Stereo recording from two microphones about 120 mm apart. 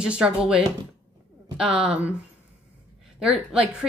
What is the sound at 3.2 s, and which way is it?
Speech, 10° right (ahead or behind).